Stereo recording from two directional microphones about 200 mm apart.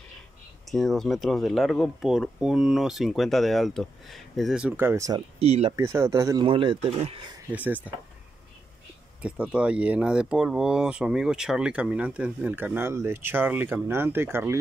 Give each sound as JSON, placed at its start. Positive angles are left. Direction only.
{"t": 0.7, "sound": "speech", "side_deg": 0}
{"t": 5.4, "sound": "speech", "side_deg": -30}
{"t": 5.8, "sound": "speech", "side_deg": -15}
{"t": 7.5, "sound": "speech", "side_deg": -10}
{"t": 9.2, "sound": "speech", "side_deg": -5}